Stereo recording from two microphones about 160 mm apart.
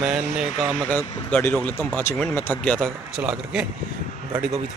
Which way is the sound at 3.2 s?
5° right (ahead or behind).